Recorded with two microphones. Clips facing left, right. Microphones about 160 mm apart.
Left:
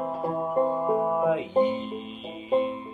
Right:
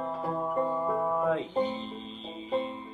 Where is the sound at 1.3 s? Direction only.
10° left (ahead or behind).